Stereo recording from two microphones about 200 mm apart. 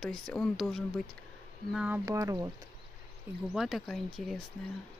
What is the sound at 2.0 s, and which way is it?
Speech, 15° right (ahead or behind).